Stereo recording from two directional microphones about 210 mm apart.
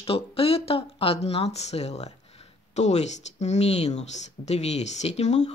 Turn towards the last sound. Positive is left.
turn(degrees=30)  # may be behind; listen again after turning